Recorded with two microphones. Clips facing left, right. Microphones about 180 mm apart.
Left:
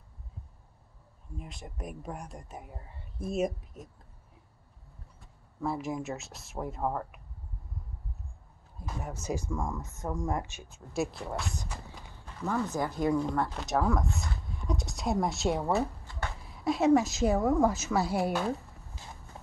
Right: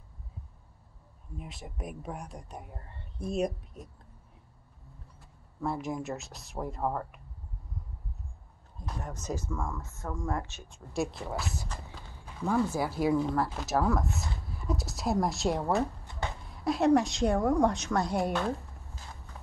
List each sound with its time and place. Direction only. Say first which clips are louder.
1.3 s speech: even; centre (ahead or behind)
5.2 s speech: even; centre (ahead or behind)
8.7 s speech: left 1 dB; 5° left (ahead or behind)
16.1 s a sound: right 2 dB; 20° right (ahead or behind)
16.4 s speech: even; centre (ahead or behind)